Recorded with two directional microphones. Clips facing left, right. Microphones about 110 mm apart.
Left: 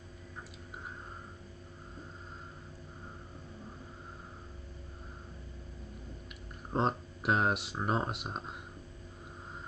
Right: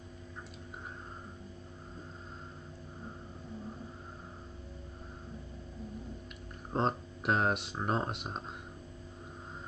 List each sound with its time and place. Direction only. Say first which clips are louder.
6.7 s speech: even; centre (ahead or behind)